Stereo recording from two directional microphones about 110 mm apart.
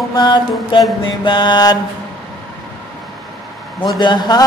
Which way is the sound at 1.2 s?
45° left (ahead or behind).